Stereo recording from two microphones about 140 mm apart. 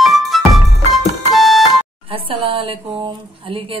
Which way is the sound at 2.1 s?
40° right (ahead or behind).